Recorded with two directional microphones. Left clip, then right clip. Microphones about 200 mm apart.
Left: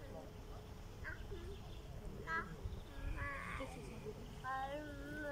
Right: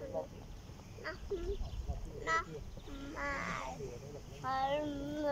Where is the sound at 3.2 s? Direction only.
55° right (ahead or behind).